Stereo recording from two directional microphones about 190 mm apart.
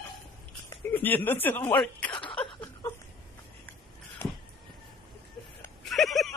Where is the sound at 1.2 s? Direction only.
10° left (ahead or behind).